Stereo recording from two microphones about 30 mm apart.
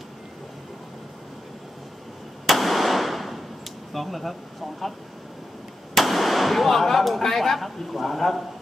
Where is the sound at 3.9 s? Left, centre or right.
Centre.